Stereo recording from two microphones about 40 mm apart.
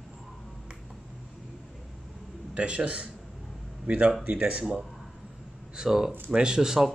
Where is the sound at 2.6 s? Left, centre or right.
Right.